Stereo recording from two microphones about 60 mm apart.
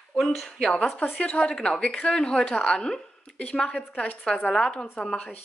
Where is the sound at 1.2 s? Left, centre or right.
Centre.